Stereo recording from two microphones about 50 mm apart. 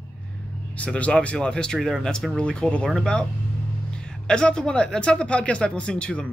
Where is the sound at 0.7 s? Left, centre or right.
Left.